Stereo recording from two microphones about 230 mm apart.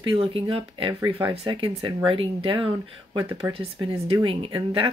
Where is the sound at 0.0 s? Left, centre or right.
Right.